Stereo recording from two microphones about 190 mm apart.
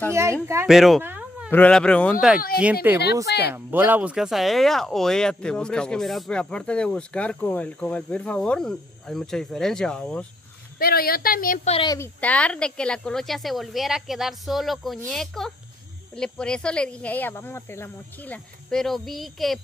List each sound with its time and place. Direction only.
0.7 s speech: centre (ahead or behind)
1.0 s a sound: 10° right (ahead or behind)
1.5 s speech: 5° left (ahead or behind)
3.3 s speech: 60° left (ahead or behind)
3.5 s speech: 10° right (ahead or behind); by 10.2 s 5° left (ahead or behind)
10.8 s speech: 50° left (ahead or behind); by 11.9 s 35° left (ahead or behind)
11.9 s speech: 10° left (ahead or behind)